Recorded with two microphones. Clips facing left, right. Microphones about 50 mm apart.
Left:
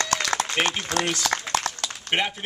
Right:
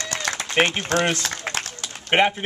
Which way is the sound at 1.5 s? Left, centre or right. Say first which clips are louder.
Even; right.